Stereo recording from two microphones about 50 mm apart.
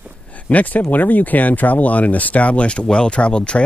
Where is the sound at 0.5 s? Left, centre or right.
Left.